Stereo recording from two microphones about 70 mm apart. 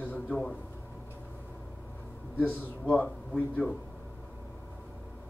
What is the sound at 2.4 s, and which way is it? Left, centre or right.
A man's voice, left.